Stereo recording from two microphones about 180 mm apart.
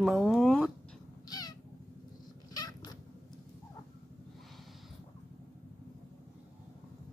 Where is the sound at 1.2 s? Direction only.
20° left (ahead or behind).